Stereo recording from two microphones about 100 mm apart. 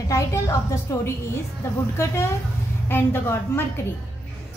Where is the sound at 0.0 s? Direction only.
30° left (ahead or behind).